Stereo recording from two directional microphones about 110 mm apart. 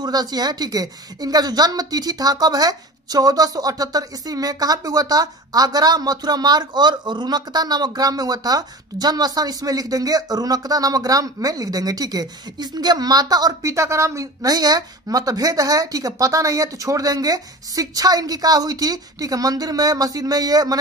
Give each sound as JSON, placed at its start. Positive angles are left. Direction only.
{"t": 0.0, "sound": "a woman's voice", "side_deg": -35}